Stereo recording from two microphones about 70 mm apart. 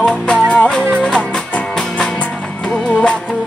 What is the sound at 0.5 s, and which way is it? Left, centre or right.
Music, centre.